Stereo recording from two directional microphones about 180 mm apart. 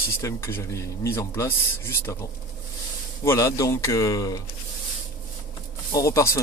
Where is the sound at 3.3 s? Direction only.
15° left (ahead or behind).